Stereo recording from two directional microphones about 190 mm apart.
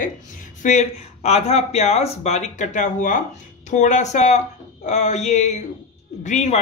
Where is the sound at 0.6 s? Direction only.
40° left (ahead or behind).